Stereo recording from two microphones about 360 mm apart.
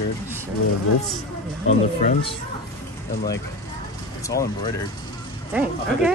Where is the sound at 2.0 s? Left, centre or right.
Left.